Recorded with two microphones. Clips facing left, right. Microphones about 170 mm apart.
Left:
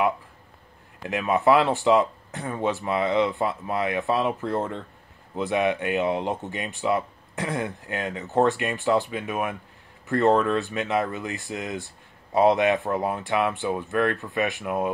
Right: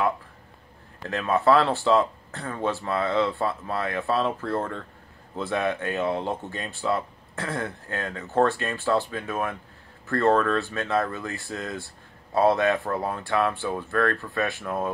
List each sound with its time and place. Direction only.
1.0 s speech: 15° left (ahead or behind)